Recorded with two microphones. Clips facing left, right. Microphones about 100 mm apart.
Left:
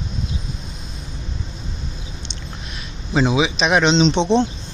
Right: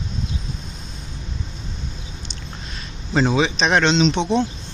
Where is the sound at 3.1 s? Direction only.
10° left (ahead or behind).